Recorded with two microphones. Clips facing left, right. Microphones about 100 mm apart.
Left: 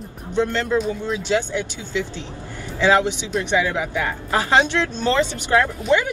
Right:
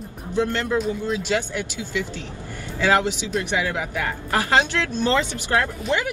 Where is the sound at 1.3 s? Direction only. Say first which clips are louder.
Left 3 dB; 20° left (ahead or behind).